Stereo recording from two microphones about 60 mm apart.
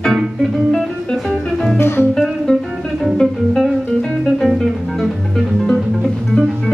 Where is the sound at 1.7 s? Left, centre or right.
Left.